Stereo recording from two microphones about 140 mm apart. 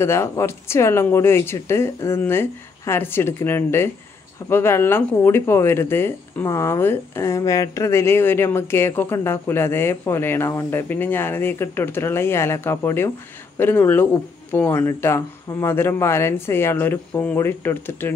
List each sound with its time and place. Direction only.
0.0 s speech: 20° left (ahead or behind)